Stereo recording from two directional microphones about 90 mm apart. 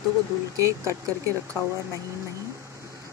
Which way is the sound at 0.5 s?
35° right (ahead or behind).